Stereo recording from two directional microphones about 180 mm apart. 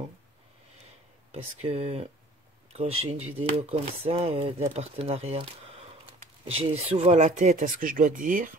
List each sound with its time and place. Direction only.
1.3 s speech: 35° right (ahead or behind)